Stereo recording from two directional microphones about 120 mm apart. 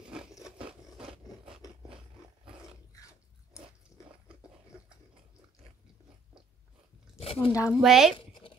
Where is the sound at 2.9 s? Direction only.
25° left (ahead or behind).